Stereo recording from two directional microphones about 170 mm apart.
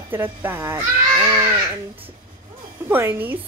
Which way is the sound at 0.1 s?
10° right (ahead or behind).